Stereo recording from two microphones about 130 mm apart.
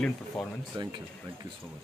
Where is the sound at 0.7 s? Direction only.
35° right (ahead or behind).